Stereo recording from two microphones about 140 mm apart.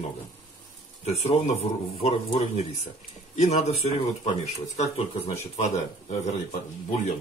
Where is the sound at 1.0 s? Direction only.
50° left (ahead or behind).